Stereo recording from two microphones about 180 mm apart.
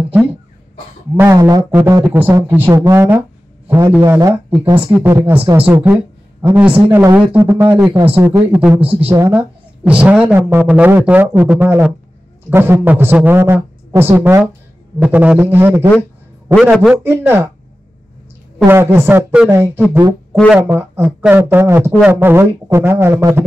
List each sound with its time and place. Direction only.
1.1 s a man's voice: 15° right (ahead or behind)
16.9 s speech: 10° right (ahead or behind)
18.7 s speech: 15° right (ahead or behind)
20.3 s speech: centre (ahead or behind)